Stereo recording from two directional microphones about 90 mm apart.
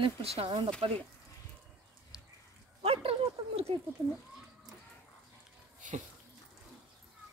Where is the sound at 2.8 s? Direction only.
90° right.